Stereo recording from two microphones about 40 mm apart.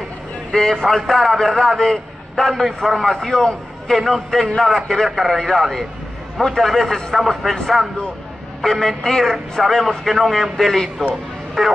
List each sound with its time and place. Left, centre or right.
0.5 s a man's voice: centre
8.6 s a man's voice: centre